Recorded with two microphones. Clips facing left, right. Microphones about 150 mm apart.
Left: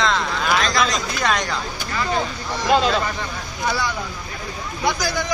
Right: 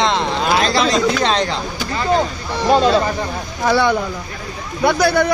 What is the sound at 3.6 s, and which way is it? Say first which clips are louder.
Speech: right 9 dB; 70° right (ahead or behind).